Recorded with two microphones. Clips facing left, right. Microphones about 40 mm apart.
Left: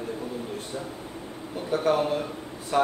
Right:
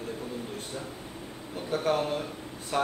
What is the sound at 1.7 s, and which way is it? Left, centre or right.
A man's voice, centre.